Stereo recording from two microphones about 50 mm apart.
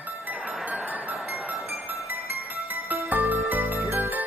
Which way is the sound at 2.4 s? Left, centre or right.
Right.